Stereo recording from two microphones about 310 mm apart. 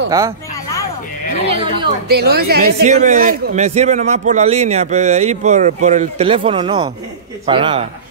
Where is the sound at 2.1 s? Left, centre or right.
Right.